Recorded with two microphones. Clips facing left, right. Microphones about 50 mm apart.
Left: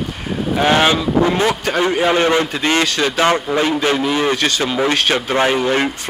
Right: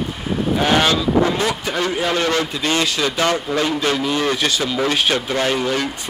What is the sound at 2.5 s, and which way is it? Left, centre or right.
Speech, left.